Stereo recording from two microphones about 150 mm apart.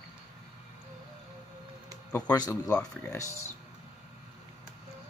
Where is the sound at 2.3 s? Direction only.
25° left (ahead or behind).